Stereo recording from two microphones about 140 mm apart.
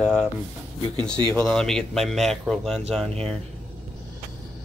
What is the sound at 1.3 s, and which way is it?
Speech, 5° left (ahead or behind).